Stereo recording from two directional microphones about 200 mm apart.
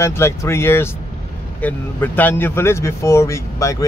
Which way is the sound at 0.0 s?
15° left (ahead or behind).